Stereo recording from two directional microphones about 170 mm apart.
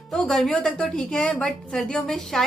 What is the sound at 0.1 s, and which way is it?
A woman's voice, 5° left (ahead or behind).